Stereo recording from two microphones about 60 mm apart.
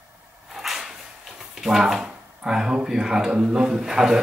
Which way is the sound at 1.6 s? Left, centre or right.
Centre.